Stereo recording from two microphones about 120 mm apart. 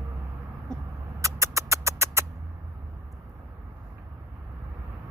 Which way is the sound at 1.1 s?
25° right (ahead or behind).